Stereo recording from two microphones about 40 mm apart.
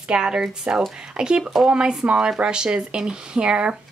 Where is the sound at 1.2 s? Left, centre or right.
Right.